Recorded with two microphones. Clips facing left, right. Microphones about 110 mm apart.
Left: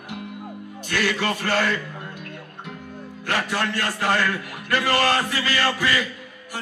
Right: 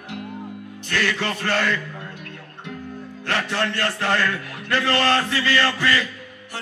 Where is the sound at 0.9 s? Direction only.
15° left (ahead or behind).